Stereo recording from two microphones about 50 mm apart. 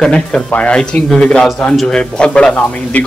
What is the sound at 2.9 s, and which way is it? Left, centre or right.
Speech, left.